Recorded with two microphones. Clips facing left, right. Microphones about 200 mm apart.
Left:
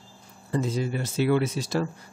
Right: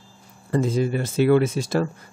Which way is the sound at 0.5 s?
50° right (ahead or behind).